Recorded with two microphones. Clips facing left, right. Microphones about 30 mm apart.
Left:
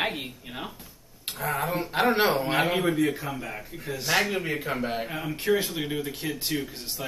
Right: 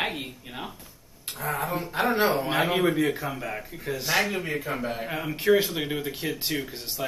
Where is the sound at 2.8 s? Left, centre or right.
Centre.